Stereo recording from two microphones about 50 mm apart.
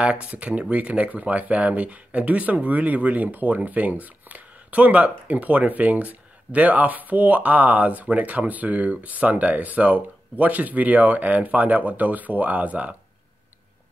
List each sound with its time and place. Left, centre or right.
0.0 s speech: right